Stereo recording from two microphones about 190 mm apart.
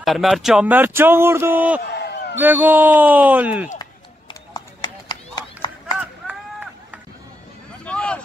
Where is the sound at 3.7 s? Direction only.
25° left (ahead or behind).